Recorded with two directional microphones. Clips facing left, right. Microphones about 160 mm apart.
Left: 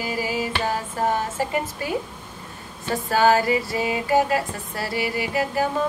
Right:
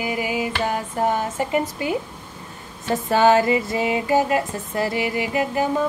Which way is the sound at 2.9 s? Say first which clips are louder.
Right 2 dB; 20° right (ahead or behind).